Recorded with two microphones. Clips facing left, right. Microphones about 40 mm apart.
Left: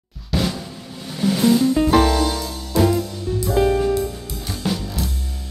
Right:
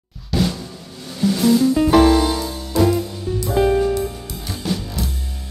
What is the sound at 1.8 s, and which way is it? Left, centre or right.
Music, centre.